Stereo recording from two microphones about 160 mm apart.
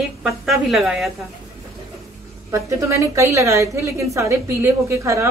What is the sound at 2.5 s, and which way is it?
A woman's voice, 20° right (ahead or behind).